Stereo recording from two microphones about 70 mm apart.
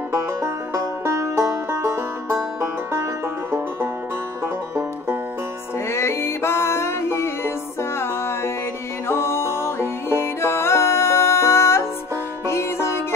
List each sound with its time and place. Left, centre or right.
0.1 s music: right
5.9 s music: left